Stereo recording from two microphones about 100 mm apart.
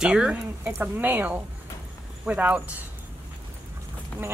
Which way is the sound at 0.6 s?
20° right (ahead or behind).